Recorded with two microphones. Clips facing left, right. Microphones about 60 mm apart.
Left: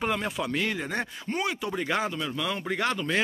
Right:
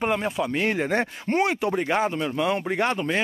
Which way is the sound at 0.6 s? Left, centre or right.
Right.